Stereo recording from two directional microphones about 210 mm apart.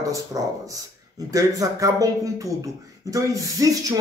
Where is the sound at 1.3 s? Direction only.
15° right (ahead or behind).